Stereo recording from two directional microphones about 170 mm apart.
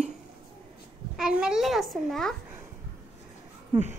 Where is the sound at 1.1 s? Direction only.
5° right (ahead or behind).